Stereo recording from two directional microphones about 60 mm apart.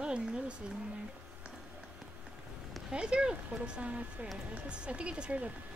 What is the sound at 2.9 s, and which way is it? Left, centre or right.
Speech, centre.